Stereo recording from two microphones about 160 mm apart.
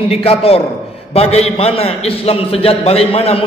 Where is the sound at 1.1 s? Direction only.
40° left (ahead or behind).